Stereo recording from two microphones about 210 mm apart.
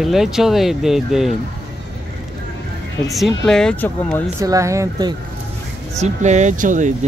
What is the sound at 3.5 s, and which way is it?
Speech, 5° left (ahead or behind).